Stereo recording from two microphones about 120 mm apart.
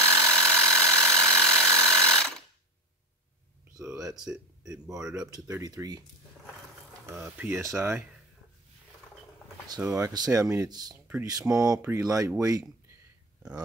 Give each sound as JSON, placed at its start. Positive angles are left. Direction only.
{"t": 0.1, "sound": "ratchet", "side_deg": 5}
{"t": 4.8, "sound": "speech", "side_deg": -5}
{"t": 5.6, "sound": "speech", "side_deg": -30}
{"t": 7.1, "sound": "speech", "side_deg": -20}
{"t": 9.9, "sound": "speech", "side_deg": -30}